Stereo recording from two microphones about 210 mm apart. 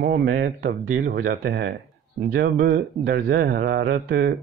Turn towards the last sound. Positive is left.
turn(degrees=-45)  # may be behind; listen again after turning